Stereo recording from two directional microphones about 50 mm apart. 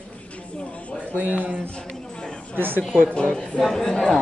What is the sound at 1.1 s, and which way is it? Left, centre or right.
Speech, right.